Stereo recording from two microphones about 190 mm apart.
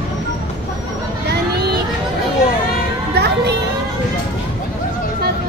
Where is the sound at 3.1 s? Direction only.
60° right (ahead or behind).